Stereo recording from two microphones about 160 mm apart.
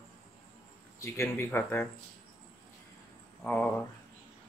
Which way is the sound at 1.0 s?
20° left (ahead or behind).